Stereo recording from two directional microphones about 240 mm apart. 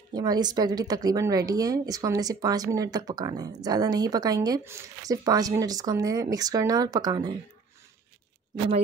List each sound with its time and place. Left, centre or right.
0.1 s speech: centre